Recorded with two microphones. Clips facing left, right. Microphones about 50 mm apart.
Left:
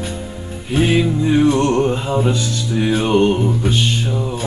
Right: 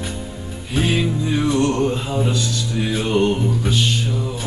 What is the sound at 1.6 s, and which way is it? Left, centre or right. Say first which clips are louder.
Music: left 3 dB; left.